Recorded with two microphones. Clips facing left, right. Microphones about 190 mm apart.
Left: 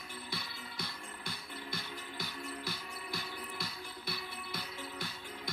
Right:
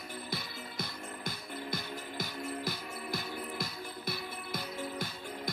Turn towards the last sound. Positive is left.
turn(degrees=-45)  # may be behind; listen again after turning